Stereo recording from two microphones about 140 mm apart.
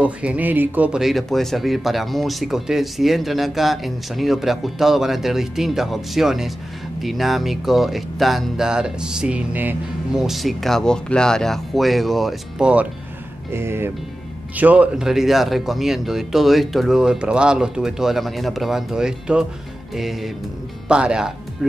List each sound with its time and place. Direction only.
0.0 s a man's voice: 10° right (ahead or behind)
13.5 s a man's voice: 15° right (ahead or behind)